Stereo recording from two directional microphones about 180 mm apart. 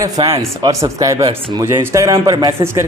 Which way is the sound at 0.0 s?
20° right (ahead or behind).